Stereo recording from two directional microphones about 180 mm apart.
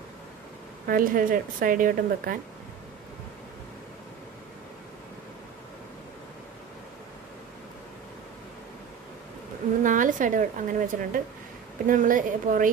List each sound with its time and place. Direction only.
0.8 s a woman's voice: 50° right (ahead or behind)
9.8 s a woman's voice: 45° right (ahead or behind)